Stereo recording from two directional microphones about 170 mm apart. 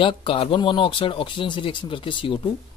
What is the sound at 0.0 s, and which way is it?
Speech, 30° left (ahead or behind).